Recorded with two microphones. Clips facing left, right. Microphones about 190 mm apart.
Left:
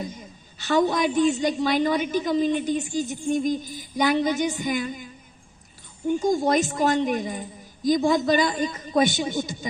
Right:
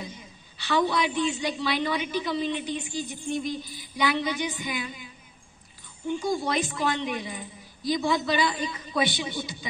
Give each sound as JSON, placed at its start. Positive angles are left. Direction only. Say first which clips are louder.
{"t": 0.0, "sound": "a woman's voice", "louder": "left 6 dB", "side_deg": 45}